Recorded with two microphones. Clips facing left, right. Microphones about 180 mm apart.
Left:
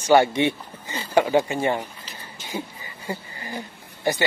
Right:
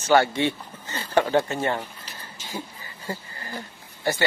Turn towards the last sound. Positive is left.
turn(degrees=15)  # may be behind; listen again after turning